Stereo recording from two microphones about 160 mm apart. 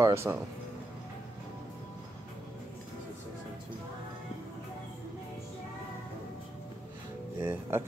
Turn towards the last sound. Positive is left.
turn(degrees=-15)  # may be behind; listen again after turning